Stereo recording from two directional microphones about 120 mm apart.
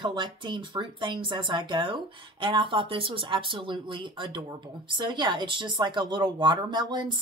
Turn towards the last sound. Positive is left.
turn(degrees=-40)  # may be behind; listen again after turning